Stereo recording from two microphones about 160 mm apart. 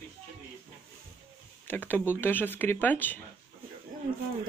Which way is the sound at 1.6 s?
10° left (ahead or behind).